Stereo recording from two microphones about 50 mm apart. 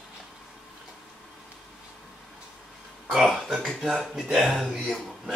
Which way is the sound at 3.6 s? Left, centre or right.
Centre.